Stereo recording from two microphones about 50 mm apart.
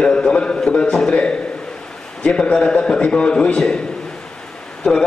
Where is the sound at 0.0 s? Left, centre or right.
Left.